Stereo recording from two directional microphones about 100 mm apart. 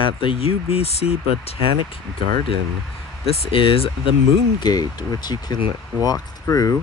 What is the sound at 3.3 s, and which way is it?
Speech, 65° left (ahead or behind).